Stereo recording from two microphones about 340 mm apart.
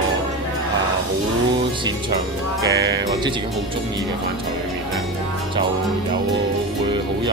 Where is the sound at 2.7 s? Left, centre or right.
Right.